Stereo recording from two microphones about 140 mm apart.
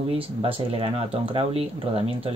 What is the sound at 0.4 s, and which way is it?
Speech, 40° right (ahead or behind).